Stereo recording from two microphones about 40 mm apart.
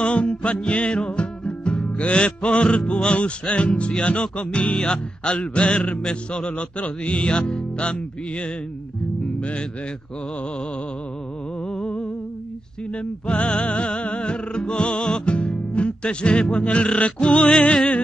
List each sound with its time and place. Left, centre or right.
0.0 s music: left
9.4 s speech: left
11.7 s music: left